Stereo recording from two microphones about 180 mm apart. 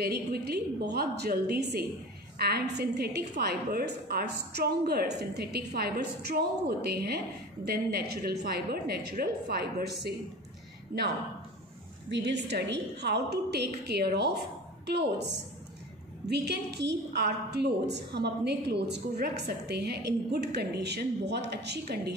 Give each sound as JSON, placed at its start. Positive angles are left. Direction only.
{"t": 0.0, "sound": "a woman's voice", "side_deg": -65}
{"t": 12.1, "sound": "a woman's voice", "side_deg": -70}